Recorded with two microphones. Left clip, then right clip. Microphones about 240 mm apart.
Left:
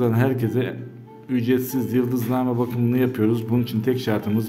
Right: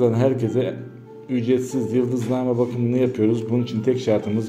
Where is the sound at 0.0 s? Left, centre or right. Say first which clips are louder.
Right 3 dB; left.